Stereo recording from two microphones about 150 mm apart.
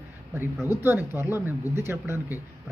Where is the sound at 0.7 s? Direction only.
15° right (ahead or behind).